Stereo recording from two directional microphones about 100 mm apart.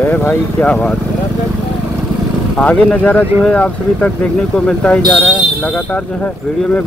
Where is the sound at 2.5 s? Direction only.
15° left (ahead or behind).